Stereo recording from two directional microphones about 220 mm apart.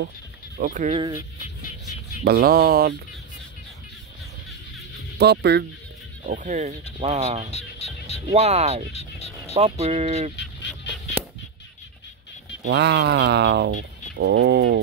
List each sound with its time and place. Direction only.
0.6 s speech: 40° right (ahead or behind)
0.9 s speech: 20° right (ahead or behind)
2.2 s a sound: 45° right (ahead or behind)
5.1 s speech: 50° right (ahead or behind)
6.2 s speech: 35° right (ahead or behind)
7.5 s music: 30° left (ahead or behind)
8.3 s speech: 30° right (ahead or behind)
12.6 s a sound: 50° right (ahead or behind)